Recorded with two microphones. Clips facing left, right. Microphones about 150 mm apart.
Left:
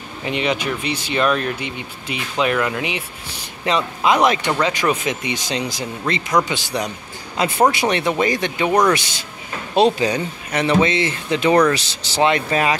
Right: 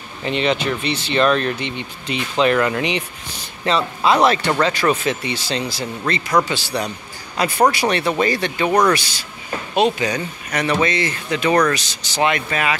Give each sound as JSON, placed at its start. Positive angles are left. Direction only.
{"t": 0.2, "sound": "speech", "side_deg": 10}
{"t": 9.8, "sound": "speech", "side_deg": 30}